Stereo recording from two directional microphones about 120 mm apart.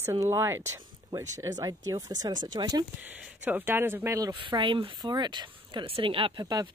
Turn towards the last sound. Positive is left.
turn(degrees=-30)  # may be behind; listen again after turning